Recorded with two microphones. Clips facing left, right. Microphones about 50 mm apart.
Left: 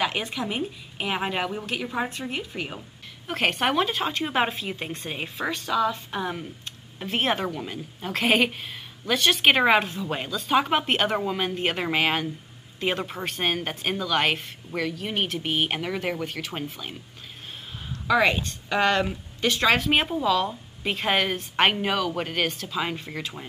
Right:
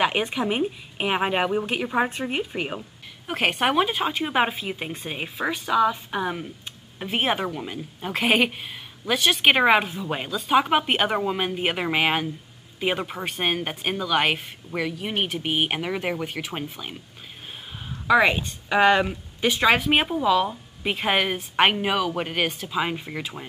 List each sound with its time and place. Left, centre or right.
0.0 s a woman's voice: right
3.3 s a woman's voice: centre
18.0 s a woman's voice: centre